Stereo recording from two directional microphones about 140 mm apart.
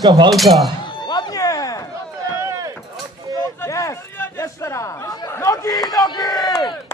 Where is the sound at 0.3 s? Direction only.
Centre (ahead or behind).